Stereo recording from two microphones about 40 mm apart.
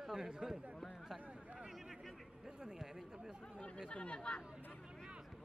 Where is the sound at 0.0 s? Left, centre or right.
Centre.